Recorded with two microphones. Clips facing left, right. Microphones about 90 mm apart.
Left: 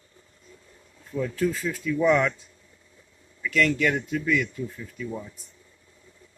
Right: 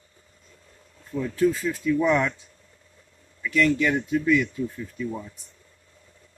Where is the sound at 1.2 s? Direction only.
10° right (ahead or behind).